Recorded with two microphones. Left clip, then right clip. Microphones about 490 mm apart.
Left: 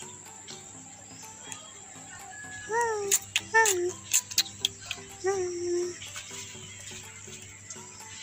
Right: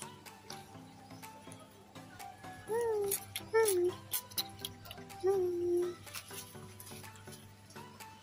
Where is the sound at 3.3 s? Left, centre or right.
Right.